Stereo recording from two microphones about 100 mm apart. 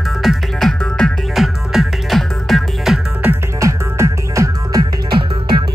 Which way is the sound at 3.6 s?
30° right (ahead or behind).